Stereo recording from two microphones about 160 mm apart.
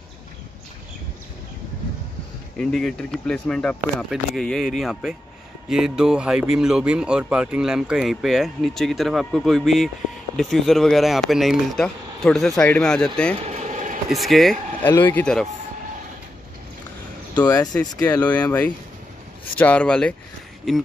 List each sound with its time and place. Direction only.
2.5 s speech: 5° left (ahead or behind)
17.5 s speech: 25° left (ahead or behind)
18.0 s speech: 10° left (ahead or behind)